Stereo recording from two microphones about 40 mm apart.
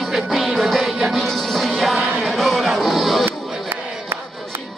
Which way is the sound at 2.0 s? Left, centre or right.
Centre.